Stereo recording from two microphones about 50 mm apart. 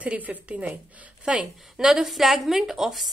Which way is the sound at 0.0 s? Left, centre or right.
Right.